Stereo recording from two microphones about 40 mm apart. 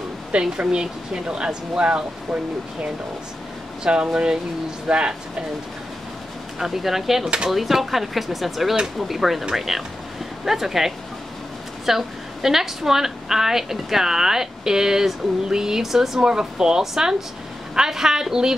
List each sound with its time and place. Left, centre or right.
0.3 s speech: right
3.8 s speech: right
6.6 s a woman's voice: centre